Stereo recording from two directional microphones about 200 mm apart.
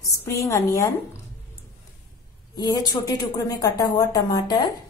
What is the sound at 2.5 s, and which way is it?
A woman's voice, 20° left (ahead or behind).